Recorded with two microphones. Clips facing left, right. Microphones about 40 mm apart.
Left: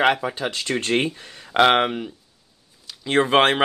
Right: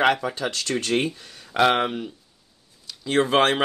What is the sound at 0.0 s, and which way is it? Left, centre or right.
Speech, centre.